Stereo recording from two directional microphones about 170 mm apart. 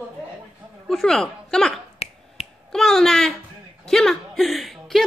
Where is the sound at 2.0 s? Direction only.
35° left (ahead or behind).